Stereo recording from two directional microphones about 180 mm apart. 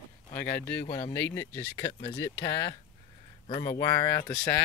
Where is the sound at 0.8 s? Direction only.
25° left (ahead or behind).